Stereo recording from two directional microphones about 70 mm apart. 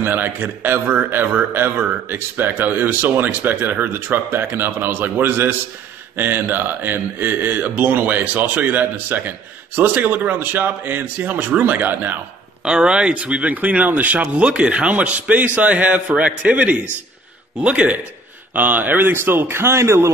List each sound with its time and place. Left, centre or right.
0.0 s speech: right
12.6 s a man's voice: centre; by 20.1 s right